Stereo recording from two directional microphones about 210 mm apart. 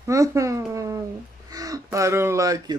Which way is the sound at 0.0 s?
15° right (ahead or behind).